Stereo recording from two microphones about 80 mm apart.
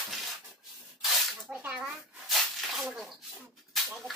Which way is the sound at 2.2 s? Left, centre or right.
Centre.